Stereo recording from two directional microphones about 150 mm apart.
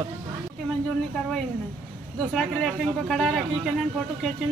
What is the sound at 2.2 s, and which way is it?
A man's voice, centre (ahead or behind).